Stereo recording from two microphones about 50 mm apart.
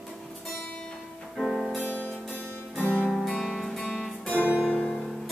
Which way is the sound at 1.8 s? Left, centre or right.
Left.